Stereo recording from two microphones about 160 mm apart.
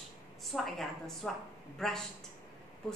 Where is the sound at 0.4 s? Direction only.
Centre (ahead or behind).